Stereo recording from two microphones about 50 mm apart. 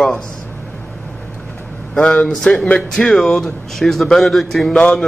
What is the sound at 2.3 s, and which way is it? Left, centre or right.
A man's voice, centre.